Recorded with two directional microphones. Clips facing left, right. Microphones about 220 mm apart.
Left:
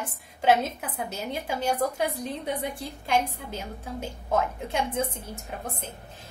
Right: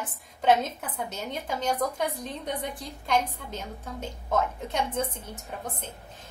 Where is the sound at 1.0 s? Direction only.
10° left (ahead or behind).